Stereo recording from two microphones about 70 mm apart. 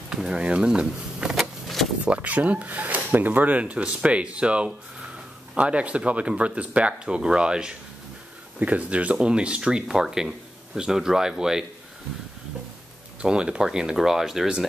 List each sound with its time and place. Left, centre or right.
0.1 s vehicle: centre
2.0 s speech: centre
13.2 s speech: centre